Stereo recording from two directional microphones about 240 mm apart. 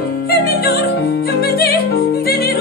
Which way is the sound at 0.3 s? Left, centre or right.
Left.